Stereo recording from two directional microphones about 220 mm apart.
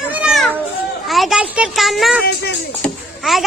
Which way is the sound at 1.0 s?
Centre (ahead or behind).